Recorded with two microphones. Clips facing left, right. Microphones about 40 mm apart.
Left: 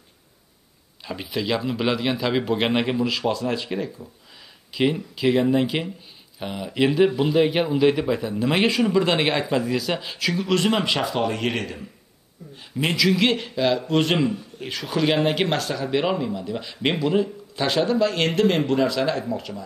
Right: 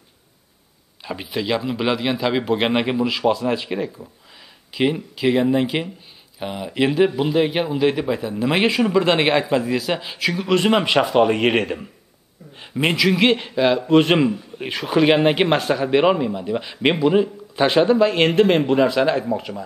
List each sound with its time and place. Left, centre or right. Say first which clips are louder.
1.0 s speech: right 2 dB; centre; by 12.9 s right
12.9 s speech: right 2 dB; centre